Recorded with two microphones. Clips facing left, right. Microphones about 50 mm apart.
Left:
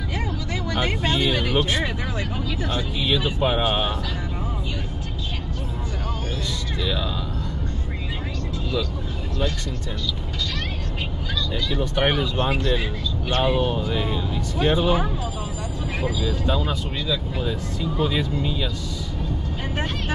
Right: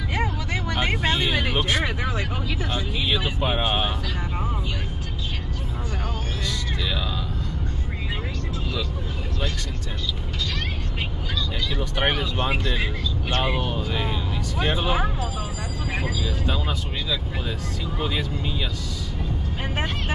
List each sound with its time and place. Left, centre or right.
0.1 s vehicle: right
2.1 s speech: centre
12.1 s speech: centre
13.9 s speech: right
17.9 s speech: centre